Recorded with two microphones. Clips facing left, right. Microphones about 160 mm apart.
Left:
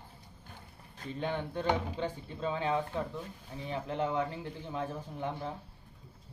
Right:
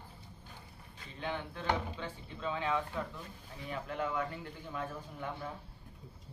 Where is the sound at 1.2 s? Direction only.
35° left (ahead or behind).